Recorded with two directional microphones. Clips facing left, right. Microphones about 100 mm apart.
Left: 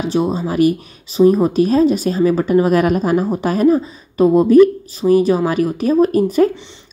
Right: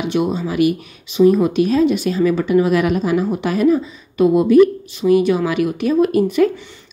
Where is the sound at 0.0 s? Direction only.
35° left (ahead or behind).